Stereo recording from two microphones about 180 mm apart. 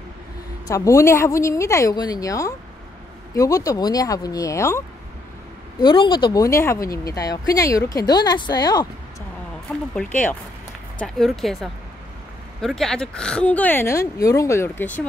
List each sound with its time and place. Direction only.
0.7 s speech: 15° left (ahead or behind)
5.8 s speech: 25° left (ahead or behind)
9.7 s speech: 5° left (ahead or behind)